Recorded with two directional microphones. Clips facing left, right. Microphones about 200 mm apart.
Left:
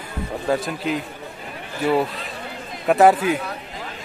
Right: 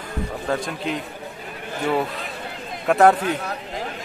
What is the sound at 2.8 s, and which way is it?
Speech, 5° left (ahead or behind).